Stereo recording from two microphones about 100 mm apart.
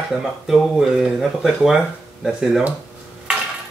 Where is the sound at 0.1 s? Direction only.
5° right (ahead or behind).